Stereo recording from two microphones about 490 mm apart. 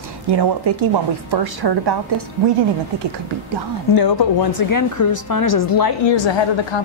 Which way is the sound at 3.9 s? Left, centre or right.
Left.